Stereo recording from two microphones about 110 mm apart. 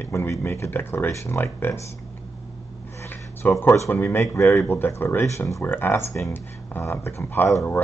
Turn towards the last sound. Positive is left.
turn(degrees=25)  # may be behind; listen again after turning